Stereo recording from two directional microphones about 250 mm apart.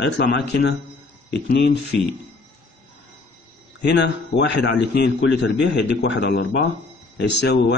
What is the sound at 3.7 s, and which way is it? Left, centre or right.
A man's voice, left.